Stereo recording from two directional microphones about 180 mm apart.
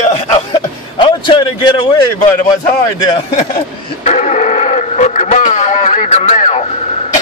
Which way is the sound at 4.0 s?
40° left (ahead or behind).